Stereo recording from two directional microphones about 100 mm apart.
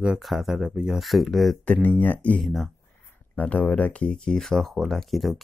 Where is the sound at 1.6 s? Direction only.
15° left (ahead or behind).